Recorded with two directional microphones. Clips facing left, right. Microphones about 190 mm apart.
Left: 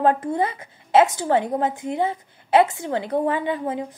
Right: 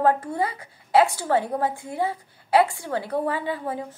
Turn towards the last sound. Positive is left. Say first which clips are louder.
# left 3 dB
turn(degrees=20)  # may be behind; listen again after turning